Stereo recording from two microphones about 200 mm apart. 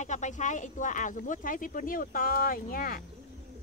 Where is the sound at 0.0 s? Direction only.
35° left (ahead or behind).